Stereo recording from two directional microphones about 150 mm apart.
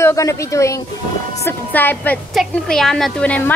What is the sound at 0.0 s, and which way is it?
A woman's voice, 20° left (ahead or behind).